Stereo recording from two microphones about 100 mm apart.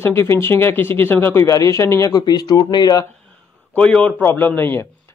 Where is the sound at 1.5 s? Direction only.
35° left (ahead or behind).